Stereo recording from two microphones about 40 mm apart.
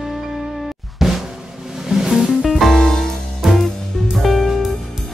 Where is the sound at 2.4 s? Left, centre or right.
Centre.